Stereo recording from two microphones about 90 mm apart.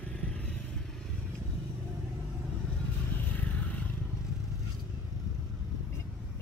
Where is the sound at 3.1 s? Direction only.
20° left (ahead or behind).